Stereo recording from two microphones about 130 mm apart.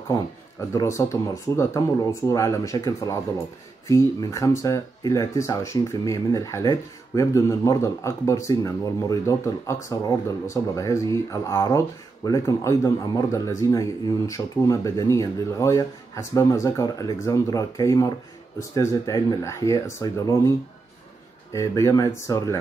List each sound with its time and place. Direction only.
0.1 s speech: 25° left (ahead or behind)
21.5 s speech: 25° left (ahead or behind)